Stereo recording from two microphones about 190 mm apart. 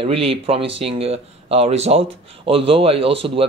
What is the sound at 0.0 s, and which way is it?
Speech, 30° right (ahead or behind).